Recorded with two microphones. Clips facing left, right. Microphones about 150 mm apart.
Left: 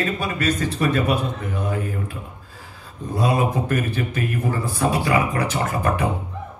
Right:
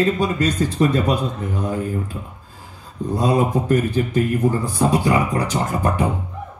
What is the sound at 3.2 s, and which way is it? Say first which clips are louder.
Speech: right 2 dB; 25° right (ahead or behind).